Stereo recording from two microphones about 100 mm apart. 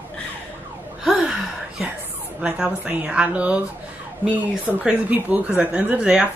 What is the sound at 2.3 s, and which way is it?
A woman's voice, 10° right (ahead or behind).